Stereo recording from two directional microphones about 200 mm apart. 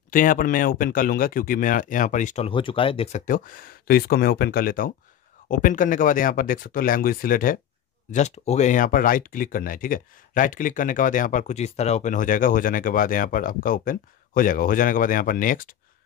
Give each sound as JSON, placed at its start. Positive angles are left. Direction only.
{"t": 0.1, "sound": "speech", "side_deg": 40}